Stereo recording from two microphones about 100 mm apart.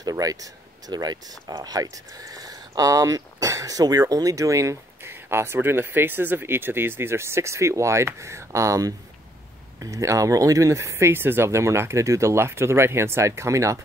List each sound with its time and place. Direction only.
0.0 s speech: 35° right (ahead or behind)